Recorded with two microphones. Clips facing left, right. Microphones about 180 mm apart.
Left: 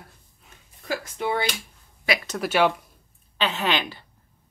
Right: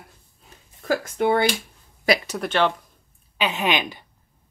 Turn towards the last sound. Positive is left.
turn(degrees=-15)  # may be behind; listen again after turning